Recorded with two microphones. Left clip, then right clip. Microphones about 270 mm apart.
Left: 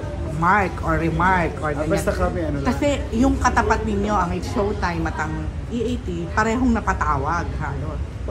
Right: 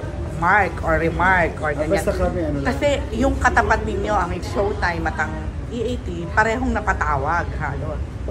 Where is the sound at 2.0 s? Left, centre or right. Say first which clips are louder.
Right 1 dB; centre.